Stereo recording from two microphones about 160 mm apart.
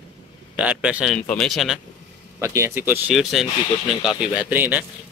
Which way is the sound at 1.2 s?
5° left (ahead or behind).